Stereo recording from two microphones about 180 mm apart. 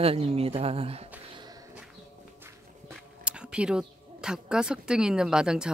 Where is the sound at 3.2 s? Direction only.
5° right (ahead or behind).